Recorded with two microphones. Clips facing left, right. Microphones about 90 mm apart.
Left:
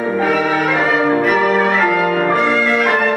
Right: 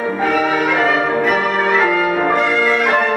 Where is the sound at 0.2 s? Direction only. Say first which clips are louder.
Right 1 dB; centre (ahead or behind).